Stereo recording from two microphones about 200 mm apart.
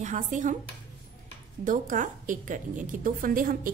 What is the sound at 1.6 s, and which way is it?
A woman's voice, 40° right (ahead or behind).